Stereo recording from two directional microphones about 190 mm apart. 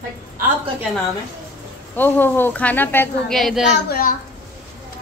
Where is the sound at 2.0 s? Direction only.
10° left (ahead or behind).